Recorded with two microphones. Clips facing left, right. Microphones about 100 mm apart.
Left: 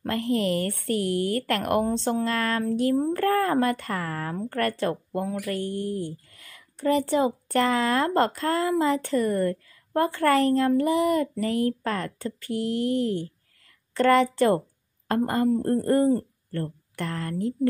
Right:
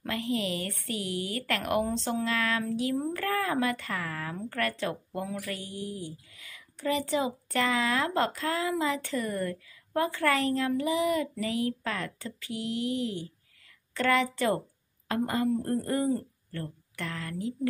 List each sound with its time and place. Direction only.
0.0 s a woman's voice: 45° left (ahead or behind)
2.7 s a woman's voice: 50° left (ahead or behind)
3.0 s a woman's voice: 40° left (ahead or behind)